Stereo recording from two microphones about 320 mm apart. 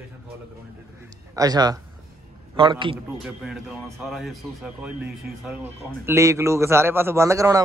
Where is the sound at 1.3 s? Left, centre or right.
Centre.